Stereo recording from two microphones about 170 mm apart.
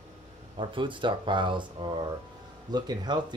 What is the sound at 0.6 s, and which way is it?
Speech, 30° right (ahead or behind).